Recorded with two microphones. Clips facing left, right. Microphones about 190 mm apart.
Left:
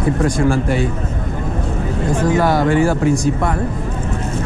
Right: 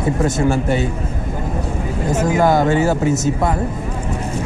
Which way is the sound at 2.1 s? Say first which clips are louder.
Right 1 dB; 25° right (ahead or behind).